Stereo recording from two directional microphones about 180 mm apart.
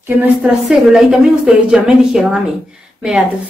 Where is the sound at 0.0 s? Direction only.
10° right (ahead or behind).